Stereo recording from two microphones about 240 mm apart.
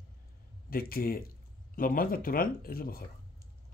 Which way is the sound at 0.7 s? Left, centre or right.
Left.